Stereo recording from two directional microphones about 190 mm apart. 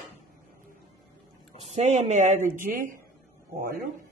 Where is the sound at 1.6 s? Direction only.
35° right (ahead or behind).